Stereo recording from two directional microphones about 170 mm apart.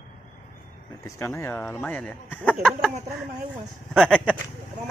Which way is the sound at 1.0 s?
15° left (ahead or behind).